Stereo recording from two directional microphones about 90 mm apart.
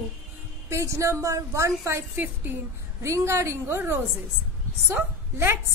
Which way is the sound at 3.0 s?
30° right (ahead or behind).